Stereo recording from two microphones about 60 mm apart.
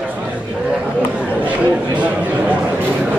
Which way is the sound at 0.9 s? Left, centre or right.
Centre.